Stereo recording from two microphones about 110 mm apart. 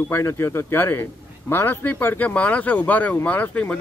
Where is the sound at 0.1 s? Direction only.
25° left (ahead or behind).